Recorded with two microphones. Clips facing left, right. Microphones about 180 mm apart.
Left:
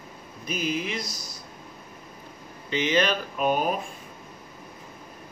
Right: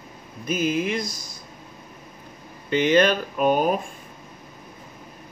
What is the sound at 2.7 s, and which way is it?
Speech, 50° right (ahead or behind).